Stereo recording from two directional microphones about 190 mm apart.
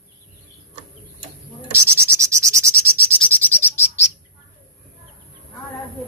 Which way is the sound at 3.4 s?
10° left (ahead or behind).